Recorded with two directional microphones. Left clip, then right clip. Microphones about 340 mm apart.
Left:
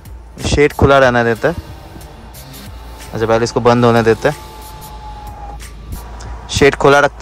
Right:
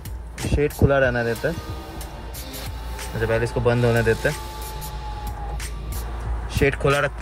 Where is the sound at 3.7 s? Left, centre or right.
Left.